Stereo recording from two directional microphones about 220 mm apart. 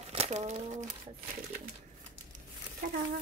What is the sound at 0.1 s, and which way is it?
Crumpling, 30° right (ahead or behind).